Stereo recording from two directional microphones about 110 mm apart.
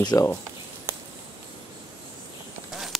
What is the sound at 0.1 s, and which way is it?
Speech, 25° left (ahead or behind).